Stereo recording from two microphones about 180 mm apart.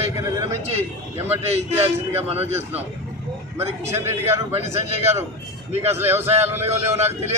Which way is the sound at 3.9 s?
15° right (ahead or behind).